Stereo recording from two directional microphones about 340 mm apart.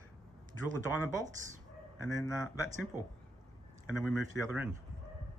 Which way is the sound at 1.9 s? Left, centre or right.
Centre.